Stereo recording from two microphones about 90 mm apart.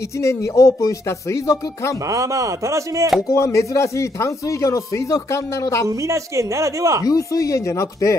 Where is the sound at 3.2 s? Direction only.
35° left (ahead or behind).